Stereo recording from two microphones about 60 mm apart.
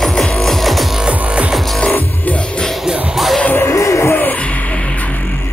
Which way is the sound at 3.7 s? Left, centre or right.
Left.